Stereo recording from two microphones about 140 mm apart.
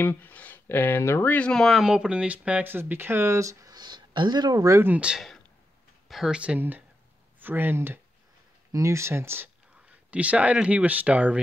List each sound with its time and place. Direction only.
0.0 s speech: 15° left (ahead or behind); by 11.3 s 10° right (ahead or behind)